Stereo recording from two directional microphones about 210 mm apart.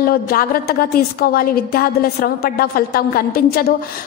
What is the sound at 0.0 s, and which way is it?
A woman's voice, 45° left (ahead or behind).